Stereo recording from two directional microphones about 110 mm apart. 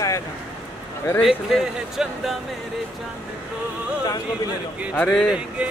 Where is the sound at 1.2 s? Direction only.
5° right (ahead or behind).